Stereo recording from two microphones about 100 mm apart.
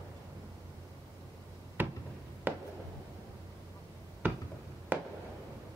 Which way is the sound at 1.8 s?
20° right (ahead or behind).